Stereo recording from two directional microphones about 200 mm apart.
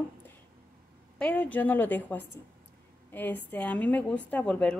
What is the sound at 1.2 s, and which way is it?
A woman's voice, 5° left (ahead or behind).